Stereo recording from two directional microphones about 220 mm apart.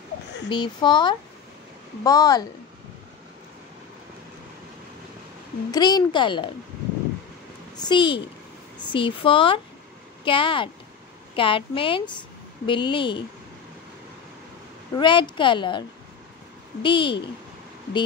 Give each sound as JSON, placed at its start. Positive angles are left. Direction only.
{"t": 0.5, "sound": "a woman's voice", "side_deg": 20}
{"t": 5.7, "sound": "speech", "side_deg": 20}
{"t": 7.7, "sound": "a woman's voice", "side_deg": 20}
{"t": 15.0, "sound": "speech", "side_deg": 20}
{"t": 16.8, "sound": "speech", "side_deg": 20}